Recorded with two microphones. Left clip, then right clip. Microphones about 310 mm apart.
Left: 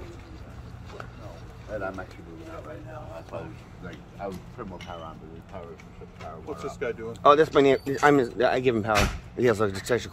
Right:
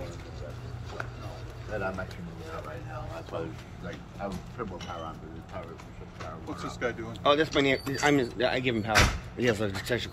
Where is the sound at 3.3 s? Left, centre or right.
Centre.